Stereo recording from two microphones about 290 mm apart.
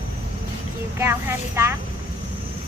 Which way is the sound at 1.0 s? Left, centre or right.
Centre.